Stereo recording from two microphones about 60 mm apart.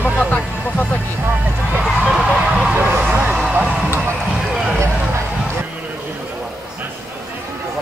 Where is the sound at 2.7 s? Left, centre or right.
Right.